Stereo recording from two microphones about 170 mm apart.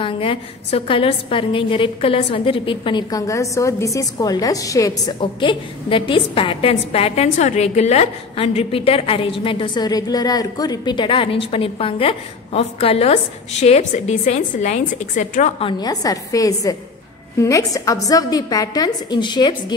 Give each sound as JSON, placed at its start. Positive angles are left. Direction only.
{"t": 0.0, "sound": "a woman's voice", "side_deg": 30}
{"t": 15.6, "sound": "a woman's voice", "side_deg": 20}